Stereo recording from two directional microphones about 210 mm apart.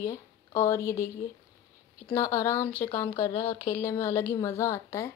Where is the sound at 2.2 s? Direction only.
15° left (ahead or behind).